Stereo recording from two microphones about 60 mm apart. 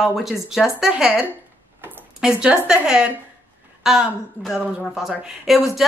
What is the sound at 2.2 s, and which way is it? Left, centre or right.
A woman's voice, centre.